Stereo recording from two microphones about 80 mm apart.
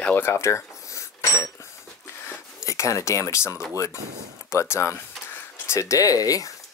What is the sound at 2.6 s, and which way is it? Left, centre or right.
Speech, left.